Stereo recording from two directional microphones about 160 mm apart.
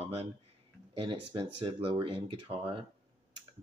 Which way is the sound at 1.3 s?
35° right (ahead or behind).